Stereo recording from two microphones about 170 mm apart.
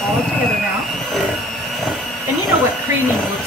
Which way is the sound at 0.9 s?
Centre (ahead or behind).